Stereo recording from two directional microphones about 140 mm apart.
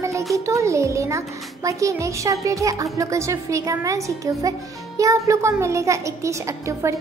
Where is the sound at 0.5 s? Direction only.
20° right (ahead or behind).